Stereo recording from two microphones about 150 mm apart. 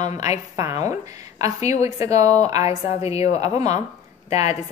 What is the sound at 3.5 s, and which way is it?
Speech, 25° right (ahead or behind).